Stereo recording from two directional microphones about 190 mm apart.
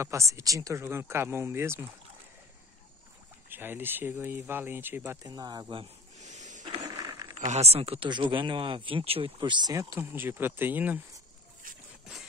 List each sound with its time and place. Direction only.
0.0 s speech: 15° right (ahead or behind)
3.4 s speech: 10° right (ahead or behind); by 6.6 s 40° right (ahead or behind)
6.6 s ratchet: 20° right (ahead or behind)
7.3 s speech: 35° right (ahead or behind); by 11.0 s 10° right (ahead or behind)